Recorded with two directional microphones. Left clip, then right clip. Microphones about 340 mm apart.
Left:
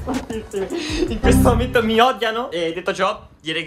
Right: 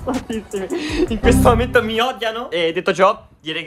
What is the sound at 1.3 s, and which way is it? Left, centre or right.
Speech, right.